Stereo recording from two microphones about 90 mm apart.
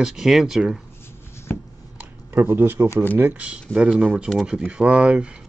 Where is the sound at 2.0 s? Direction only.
25° right (ahead or behind).